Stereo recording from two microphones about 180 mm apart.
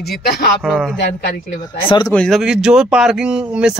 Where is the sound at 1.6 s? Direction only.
25° left (ahead or behind).